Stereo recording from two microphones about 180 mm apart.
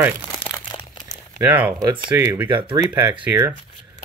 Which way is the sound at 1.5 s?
10° right (ahead or behind).